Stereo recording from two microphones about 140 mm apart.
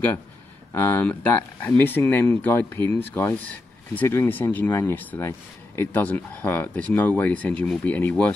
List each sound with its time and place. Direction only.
0.7 s speech: 20° left (ahead or behind)